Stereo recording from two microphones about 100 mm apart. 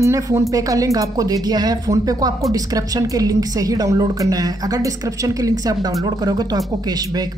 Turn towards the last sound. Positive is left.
turn(degrees=-40)  # may be behind; listen again after turning